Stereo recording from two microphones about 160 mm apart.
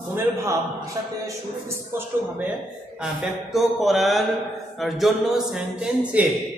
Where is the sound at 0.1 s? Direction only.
15° right (ahead or behind).